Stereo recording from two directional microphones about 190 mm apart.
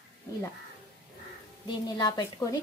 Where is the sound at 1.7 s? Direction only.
20° left (ahead or behind).